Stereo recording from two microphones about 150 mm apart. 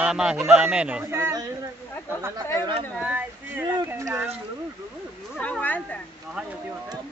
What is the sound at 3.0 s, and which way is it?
Speech, 10° right (ahead or behind).